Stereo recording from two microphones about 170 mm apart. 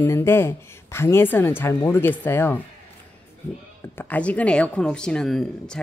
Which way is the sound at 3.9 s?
10° left (ahead or behind).